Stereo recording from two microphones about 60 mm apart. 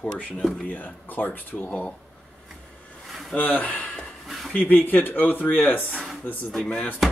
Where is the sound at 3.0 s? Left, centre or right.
Centre.